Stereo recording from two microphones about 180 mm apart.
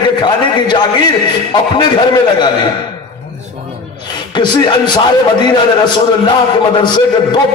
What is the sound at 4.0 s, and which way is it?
A man's voice, 25° left (ahead or behind).